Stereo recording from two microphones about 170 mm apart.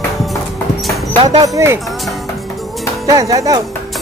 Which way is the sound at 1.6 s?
15° right (ahead or behind).